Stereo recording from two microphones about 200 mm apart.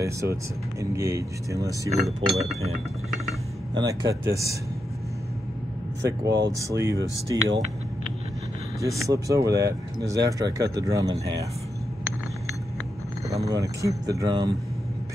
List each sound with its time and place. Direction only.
0.0 s speech: 15° right (ahead or behind)
3.7 s speech: 15° right (ahead or behind)
6.2 s speech: 55° right (ahead or behind)
6.6 s speech: 15° right (ahead or behind)
8.8 s speech: 15° right (ahead or behind)
13.3 s speech: 15° right (ahead or behind)